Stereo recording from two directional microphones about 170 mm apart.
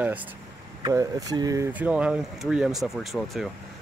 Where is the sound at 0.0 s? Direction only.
10° right (ahead or behind).